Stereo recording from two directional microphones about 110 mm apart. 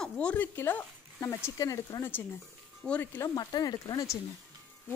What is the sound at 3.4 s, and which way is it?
Speech, 35° left (ahead or behind).